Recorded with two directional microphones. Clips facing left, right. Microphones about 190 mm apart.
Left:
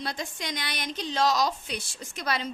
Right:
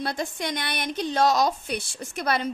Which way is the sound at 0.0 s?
55° right (ahead or behind).